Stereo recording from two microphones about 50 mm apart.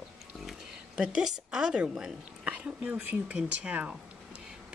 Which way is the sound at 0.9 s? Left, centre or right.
Centre.